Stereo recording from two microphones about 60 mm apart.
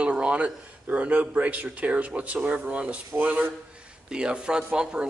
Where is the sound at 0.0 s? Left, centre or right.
Right.